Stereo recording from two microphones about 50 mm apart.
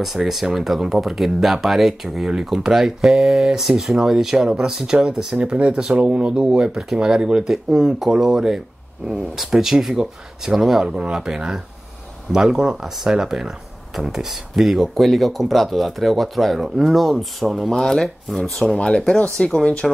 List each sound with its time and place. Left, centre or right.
0.0 s speech: centre